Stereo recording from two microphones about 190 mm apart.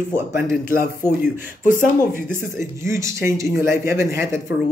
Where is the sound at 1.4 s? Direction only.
45° left (ahead or behind).